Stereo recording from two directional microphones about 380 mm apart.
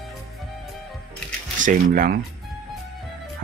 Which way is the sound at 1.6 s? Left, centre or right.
Right.